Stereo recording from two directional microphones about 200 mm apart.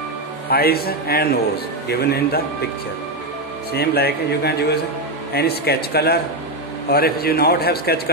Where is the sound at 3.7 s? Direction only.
55° left (ahead or behind).